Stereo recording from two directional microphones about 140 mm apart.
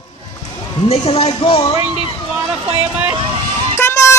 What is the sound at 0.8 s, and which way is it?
Speech, 45° left (ahead or behind).